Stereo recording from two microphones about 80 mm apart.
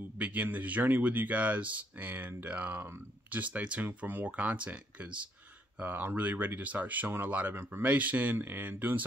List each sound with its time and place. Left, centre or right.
0.2 s a man's voice: centre
7.5 s a man's voice: right
7.9 s a man's voice: centre